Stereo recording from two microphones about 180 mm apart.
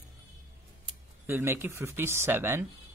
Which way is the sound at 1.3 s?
15° right (ahead or behind).